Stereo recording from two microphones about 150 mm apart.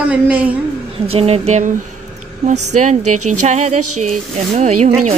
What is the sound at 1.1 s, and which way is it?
Speech, 45° right (ahead or behind).